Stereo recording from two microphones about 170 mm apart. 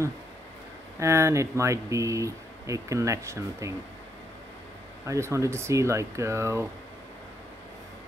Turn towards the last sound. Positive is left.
turn(degrees=-15)  # may be behind; listen again after turning